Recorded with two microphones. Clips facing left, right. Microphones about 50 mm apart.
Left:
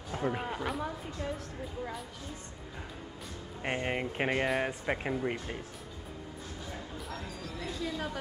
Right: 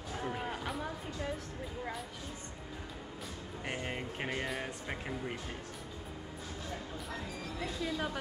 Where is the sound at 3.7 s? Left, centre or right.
Left.